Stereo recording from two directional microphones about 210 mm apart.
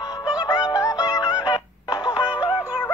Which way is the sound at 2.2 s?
5° right (ahead or behind).